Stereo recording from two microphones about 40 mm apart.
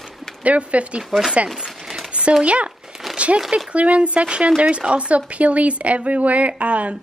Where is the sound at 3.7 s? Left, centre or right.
Right.